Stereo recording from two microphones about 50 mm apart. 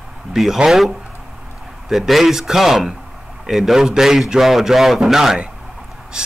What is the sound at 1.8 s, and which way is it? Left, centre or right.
A man's voice, centre.